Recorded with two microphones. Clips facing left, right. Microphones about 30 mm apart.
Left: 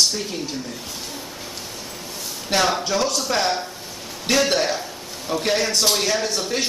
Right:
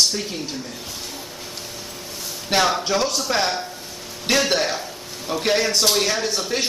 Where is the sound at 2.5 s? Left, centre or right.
Centre.